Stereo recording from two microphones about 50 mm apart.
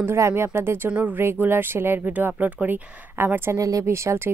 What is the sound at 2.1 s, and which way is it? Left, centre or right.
Speech, right.